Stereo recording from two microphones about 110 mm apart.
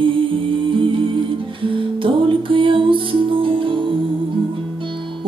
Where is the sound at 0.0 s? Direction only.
50° right (ahead or behind).